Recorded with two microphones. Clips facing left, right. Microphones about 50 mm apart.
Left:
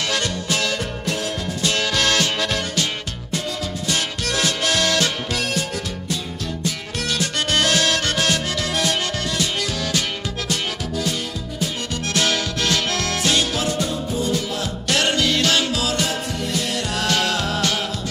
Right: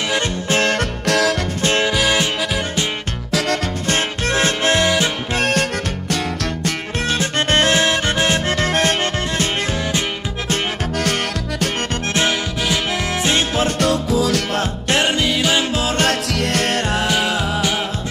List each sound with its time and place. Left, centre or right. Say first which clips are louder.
0.1 s music: right 4 dB; right
0.7 s music: right 7 dB; right
1.6 s music: right 4 dB; right
1.9 s music: right 2 dB; centre
3.9 s music: right 5 dB; right
4.8 s music: right 3 dB; right
5.3 s music: right 6 dB; right
7.1 s music: right 4 dB; right
12.1 s music: right 2 dB; right
12.6 s music: right 2 dB; centre
13.7 s music: right 6 dB; right
14.9 s music: right 1 dB; right
16.0 s music: right 6 dB; right
16.9 s music: right 3 dB; centre